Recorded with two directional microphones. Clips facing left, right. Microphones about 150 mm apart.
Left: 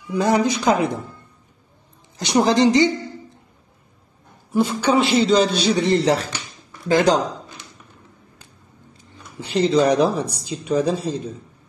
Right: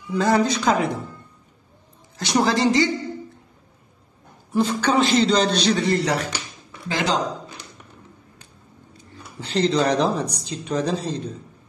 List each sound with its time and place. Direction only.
0.1 s a man's voice: 15° left (ahead or behind)
2.1 s a woman's voice: 20° left (ahead or behind)
4.6 s a man's voice: 10° left (ahead or behind)
5.8 s a woman's voice: 25° left (ahead or behind)
6.9 s speech: 45° left (ahead or behind)
9.4 s a man's voice: 10° left (ahead or behind)